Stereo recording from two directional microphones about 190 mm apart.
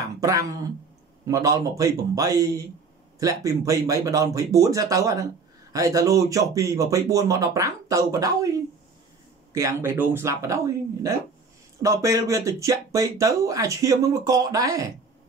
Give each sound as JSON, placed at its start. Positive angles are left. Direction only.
{"t": 0.0, "sound": "a sound", "side_deg": -20}
{"t": 1.2, "sound": "speech", "side_deg": -15}
{"t": 9.5, "sound": "speech", "side_deg": -15}